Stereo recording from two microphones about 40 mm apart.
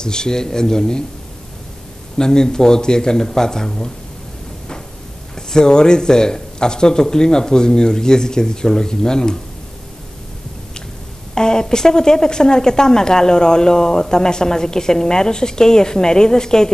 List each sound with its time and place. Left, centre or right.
0.0 s speech: centre
2.1 s speech: centre
5.3 s speech: centre
11.3 s speech: centre